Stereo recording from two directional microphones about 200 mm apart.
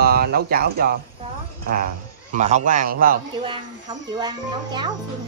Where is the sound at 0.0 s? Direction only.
50° right (ahead or behind).